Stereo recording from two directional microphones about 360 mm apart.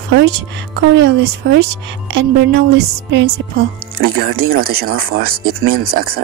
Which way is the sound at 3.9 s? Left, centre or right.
Right.